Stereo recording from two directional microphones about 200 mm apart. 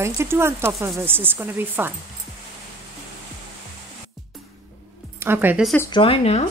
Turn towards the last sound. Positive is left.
turn(degrees=30)  # may be behind; listen again after turning